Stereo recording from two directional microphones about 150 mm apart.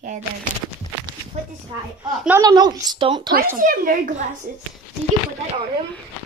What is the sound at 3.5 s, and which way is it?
A woman's voice, 65° right (ahead or behind).